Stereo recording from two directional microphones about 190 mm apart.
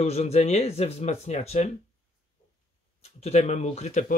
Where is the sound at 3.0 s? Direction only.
35° left (ahead or behind).